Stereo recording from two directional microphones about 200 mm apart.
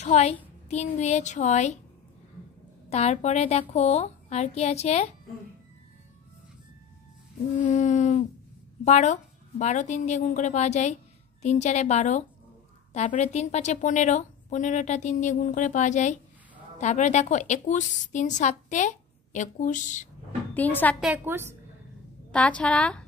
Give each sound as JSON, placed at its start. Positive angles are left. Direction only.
{"t": 0.0, "sound": "a woman's voice", "side_deg": 35}
{"t": 2.9, "sound": "a woman's voice", "side_deg": 30}
{"t": 7.6, "sound": "a sound", "side_deg": 40}
{"t": 8.8, "sound": "a woman's voice", "side_deg": 35}
{"t": 20.5, "sound": "a woman's voice", "side_deg": 10}
{"t": 21.0, "sound": "a woman's voice", "side_deg": -10}
{"t": 22.3, "sound": "a woman's voice", "side_deg": 5}